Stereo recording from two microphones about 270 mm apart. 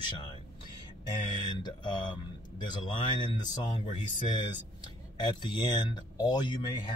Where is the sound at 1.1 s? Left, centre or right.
Centre.